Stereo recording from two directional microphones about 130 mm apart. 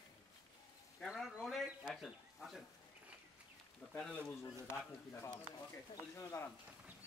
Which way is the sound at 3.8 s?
10° left (ahead or behind).